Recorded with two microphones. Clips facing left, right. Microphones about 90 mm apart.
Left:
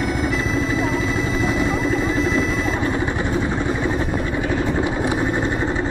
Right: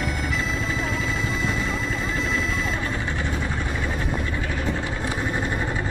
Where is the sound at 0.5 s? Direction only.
Centre (ahead or behind).